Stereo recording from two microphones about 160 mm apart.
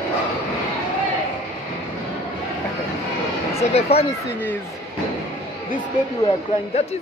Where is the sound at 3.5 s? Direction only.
40° left (ahead or behind).